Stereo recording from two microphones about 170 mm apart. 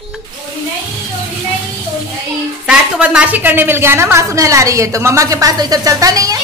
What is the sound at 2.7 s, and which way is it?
A woman's voice, 5° right (ahead or behind).